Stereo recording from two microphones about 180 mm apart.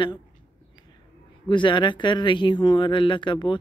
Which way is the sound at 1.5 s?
25° left (ahead or behind).